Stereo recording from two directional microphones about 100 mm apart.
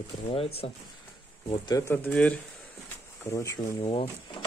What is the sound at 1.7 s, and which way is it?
Speech, 35° left (ahead or behind).